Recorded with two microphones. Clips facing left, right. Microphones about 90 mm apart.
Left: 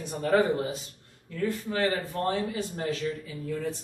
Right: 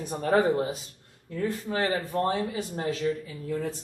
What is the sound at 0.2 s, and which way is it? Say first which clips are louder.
Speech: right 1 dB; 35° right (ahead or behind).